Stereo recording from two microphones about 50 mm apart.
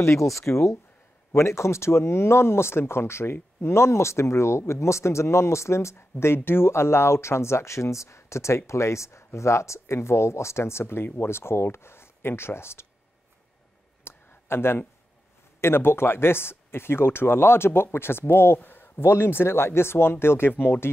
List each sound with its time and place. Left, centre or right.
0.0 s speech: left
1.3 s speech: left
14.0 s a sound: left
15.6 s speech: left